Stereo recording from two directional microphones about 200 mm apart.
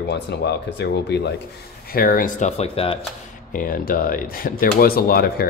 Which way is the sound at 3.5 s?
45° left (ahead or behind).